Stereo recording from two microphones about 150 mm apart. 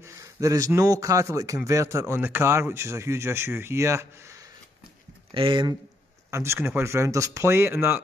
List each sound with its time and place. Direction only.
0.0 s a man's voice: 20° right (ahead or behind)
5.3 s speech: 35° right (ahead or behind)
6.3 s a man's voice: 15° right (ahead or behind)